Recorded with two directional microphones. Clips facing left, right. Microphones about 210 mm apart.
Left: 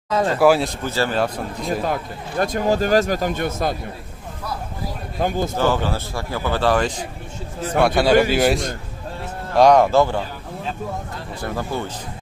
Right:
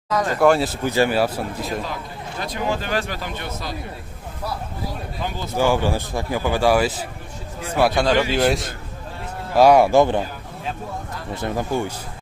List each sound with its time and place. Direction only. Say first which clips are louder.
0.1 s speech: left 2 dB; 30° left (ahead or behind)
0.4 s a man's voice: even; 5° left (ahead or behind)
0.7 s a man's voice: right 3 dB; 15° right (ahead or behind)
1.9 s speech: left 6 dB; 50° left (ahead or behind)
5.2 s speech: left 9 dB; 50° left (ahead or behind)
5.6 s a man's voice: right 4 dB; 10° right (ahead or behind)
7.9 s a man's voice: left 3 dB; 5° left (ahead or behind); by 10.2 s 20° right (ahead or behind)
11.4 s a man's voice: right 3 dB; 15° right (ahead or behind)